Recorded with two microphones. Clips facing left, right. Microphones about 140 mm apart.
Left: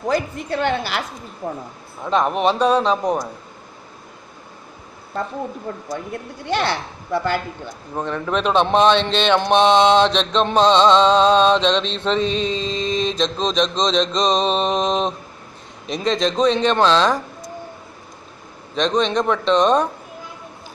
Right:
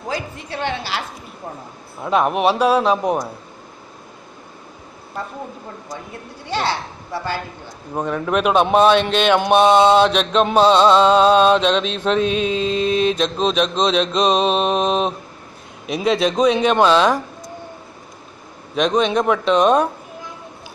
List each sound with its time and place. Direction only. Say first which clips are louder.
0.1 s a woman's voice: left 5 dB; 50° left (ahead or behind)
2.0 s a man's voice: right 1 dB; 5° right (ahead or behind)
6.4 s a child's voice: left 1 dB; 55° left (ahead or behind)
7.9 s a man's voice: right 2 dB; 10° right (ahead or behind)
18.8 s a man's voice: right 2 dB; 10° right (ahead or behind)